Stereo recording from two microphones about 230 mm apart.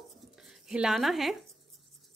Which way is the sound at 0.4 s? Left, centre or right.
Centre.